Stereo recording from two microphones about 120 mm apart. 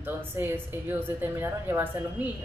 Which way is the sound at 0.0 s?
15° right (ahead or behind).